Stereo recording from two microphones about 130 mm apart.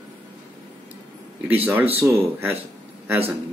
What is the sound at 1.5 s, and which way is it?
Speech, 15° right (ahead or behind).